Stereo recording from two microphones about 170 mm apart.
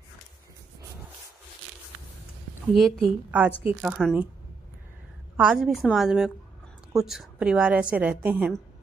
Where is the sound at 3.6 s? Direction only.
10° right (ahead or behind).